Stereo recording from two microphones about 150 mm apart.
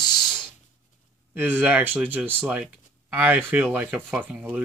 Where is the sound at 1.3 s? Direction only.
10° right (ahead or behind).